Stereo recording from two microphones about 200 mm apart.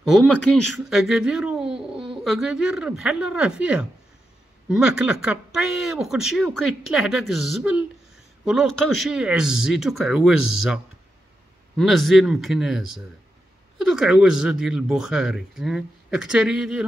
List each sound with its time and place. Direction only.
0.0 s a man's voice: centre (ahead or behind)
10.3 s speech: 90° left
11.7 s a man's voice: centre (ahead or behind)
13.8 s a man's voice: centre (ahead or behind)